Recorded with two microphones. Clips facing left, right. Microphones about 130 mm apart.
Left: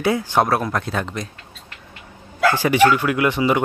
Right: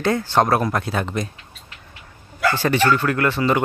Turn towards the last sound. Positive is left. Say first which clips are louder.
# left 1 dB
turn(degrees=15)  # may be behind; listen again after turning